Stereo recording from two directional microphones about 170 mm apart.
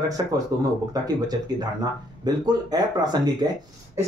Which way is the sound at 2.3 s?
25° right (ahead or behind).